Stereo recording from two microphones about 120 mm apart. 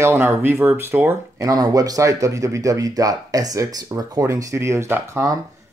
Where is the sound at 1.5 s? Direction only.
30° right (ahead or behind).